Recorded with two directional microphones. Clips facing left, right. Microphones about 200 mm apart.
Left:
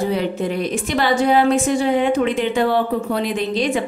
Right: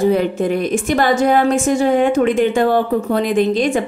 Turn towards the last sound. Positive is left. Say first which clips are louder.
# right 5 dB
turn(degrees=-50)  # may be behind; listen again after turning